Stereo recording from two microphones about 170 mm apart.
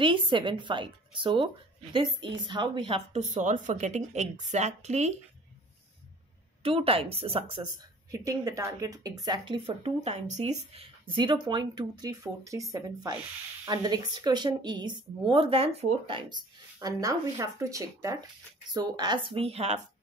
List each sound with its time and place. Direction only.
0.0 s speech: 30° right (ahead or behind)
6.6 s a woman's voice: 35° right (ahead or behind)